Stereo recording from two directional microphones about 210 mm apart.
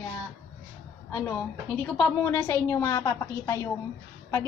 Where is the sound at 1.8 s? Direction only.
10° left (ahead or behind).